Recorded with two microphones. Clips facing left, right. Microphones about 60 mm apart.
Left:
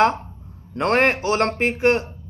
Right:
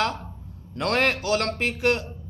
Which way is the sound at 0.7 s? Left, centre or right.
Left.